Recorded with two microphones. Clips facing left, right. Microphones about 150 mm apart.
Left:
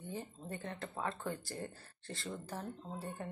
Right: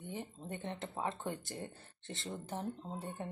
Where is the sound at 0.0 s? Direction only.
20° right (ahead or behind).